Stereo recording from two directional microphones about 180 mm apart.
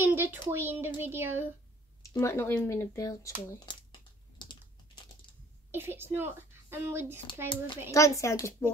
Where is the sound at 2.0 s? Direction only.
15° left (ahead or behind).